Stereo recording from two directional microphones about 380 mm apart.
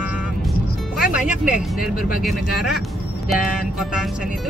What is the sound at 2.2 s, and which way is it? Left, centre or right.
Speech, centre.